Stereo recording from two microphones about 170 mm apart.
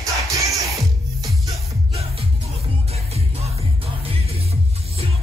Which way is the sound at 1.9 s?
35° right (ahead or behind).